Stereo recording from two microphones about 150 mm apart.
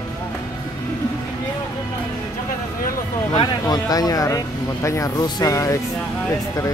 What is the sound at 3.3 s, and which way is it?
Speech, 30° left (ahead or behind).